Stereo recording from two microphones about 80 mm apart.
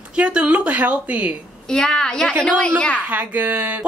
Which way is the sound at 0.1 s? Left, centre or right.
Centre.